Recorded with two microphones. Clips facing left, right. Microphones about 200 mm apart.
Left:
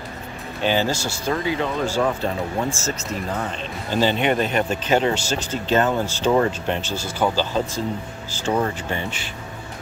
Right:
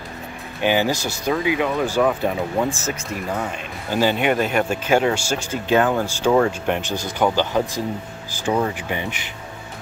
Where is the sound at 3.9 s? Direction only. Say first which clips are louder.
Right 1 dB; 10° right (ahead or behind).